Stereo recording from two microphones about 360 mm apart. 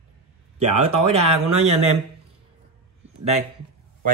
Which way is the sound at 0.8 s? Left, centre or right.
Centre.